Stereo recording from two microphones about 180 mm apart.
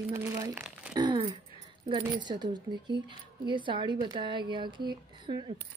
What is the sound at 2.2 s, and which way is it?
Speech, 25° right (ahead or behind).